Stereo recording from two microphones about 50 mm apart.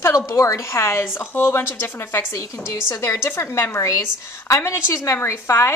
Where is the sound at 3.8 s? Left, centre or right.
Left.